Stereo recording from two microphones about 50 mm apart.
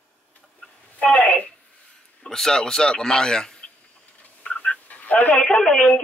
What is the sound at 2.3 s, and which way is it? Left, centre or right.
Music, centre.